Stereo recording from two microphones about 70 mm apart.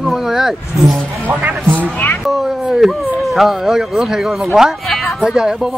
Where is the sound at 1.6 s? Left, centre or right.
Right.